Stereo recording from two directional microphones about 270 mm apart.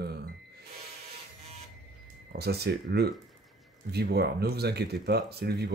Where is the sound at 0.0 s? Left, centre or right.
Right.